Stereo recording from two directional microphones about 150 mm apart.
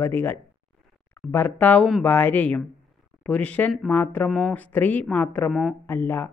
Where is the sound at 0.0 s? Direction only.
15° left (ahead or behind).